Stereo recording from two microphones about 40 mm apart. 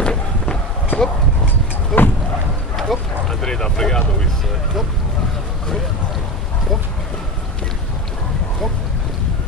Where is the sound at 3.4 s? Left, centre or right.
Centre.